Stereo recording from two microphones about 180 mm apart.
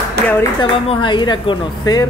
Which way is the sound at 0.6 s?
25° left (ahead or behind).